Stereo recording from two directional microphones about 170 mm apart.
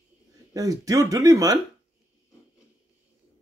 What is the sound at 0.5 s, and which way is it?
Speech, 20° right (ahead or behind).